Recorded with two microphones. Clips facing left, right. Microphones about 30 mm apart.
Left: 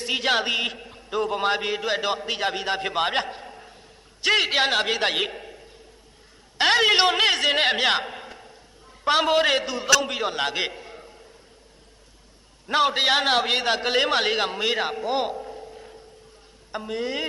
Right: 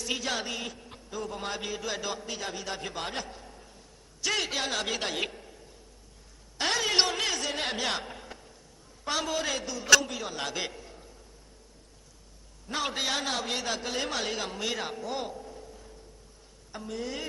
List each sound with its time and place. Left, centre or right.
0.0 s a man's voice: left
9.0 s a man's voice: left
12.6 s a man's voice: left